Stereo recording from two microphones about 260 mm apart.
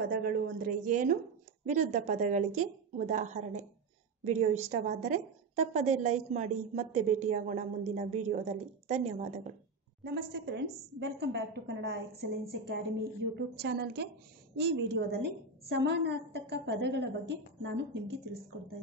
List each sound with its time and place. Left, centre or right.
0.1 s a woman's voice: right
10.0 s a woman's voice: right